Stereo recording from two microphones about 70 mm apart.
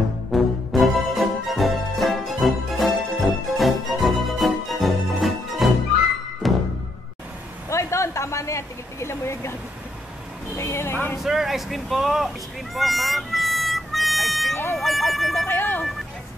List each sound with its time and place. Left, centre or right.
0.3 s music: centre
7.7 s a sound: left
10.5 s vehicle: left
11.2 s vehicle: centre
12.7 s harmonica: centre
14.5 s emergency vehicle: left
14.8 s music: centre
15.4 s a sound: left